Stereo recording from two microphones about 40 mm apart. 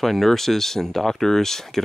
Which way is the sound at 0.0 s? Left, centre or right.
Centre.